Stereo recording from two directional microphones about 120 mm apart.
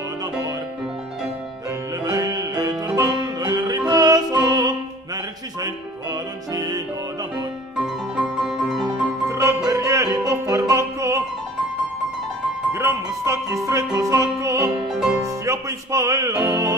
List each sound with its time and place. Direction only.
2.0 s music: 30° right (ahead or behind)
7.7 s music: 5° right (ahead or behind)
8.8 s music: 25° right (ahead or behind)
12.7 s music: 25° right (ahead or behind)